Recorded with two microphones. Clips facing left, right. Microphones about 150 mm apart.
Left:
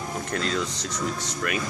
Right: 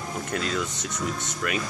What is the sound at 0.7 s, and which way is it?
Speech, 55° right (ahead or behind).